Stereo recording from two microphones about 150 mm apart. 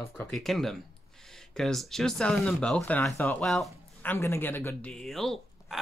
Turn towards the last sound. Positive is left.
turn(degrees=0)  # may be behind; listen again after turning